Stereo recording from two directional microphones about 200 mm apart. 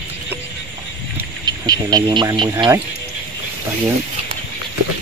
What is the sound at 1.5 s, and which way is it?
Speech, 20° right (ahead or behind).